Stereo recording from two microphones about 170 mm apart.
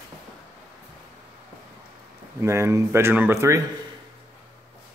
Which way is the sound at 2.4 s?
15° right (ahead or behind).